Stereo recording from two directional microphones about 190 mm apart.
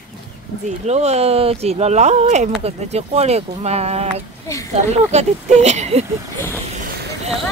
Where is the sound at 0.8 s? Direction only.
35° right (ahead or behind).